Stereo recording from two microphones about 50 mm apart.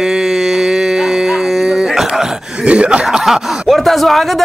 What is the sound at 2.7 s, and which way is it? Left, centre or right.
Chuckle, right.